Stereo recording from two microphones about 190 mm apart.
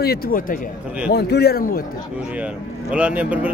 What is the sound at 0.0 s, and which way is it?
Speech, 50° left (ahead or behind).